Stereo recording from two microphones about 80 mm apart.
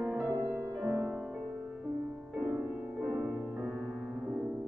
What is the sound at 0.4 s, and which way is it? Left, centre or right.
Music, right.